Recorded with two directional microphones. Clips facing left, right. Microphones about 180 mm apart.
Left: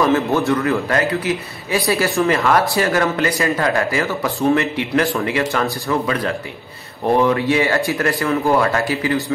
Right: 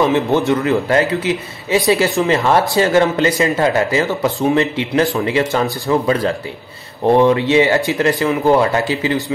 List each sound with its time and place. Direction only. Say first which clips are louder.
0.0 s a man's voice: right 2 dB; 20° right (ahead or behind)